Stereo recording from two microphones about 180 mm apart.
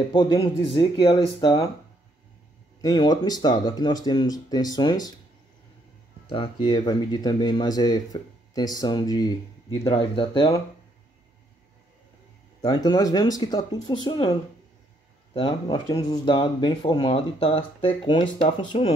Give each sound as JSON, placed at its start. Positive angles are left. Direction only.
{"t": 0.1, "sound": "speech", "side_deg": 25}
{"t": 2.8, "sound": "speech", "side_deg": 20}
{"t": 6.2, "sound": "speech", "side_deg": 30}
{"t": 12.6, "sound": "speech", "side_deg": 20}
{"t": 15.3, "sound": "speech", "side_deg": 25}